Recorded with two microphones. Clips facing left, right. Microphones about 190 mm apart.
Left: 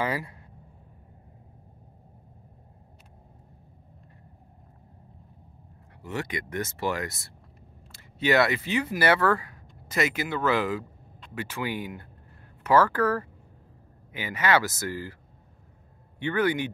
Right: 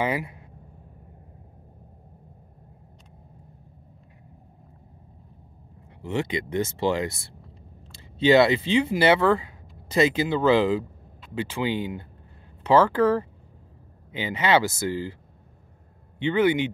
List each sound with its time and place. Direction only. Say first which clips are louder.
0.0 s speech: right 3 dB; 20° right (ahead or behind)
6.0 s speech: right 6 dB; 25° right (ahead or behind)
8.2 s speech: right 6 dB; 25° right (ahead or behind)
16.2 s speech: right 4 dB; 20° right (ahead or behind)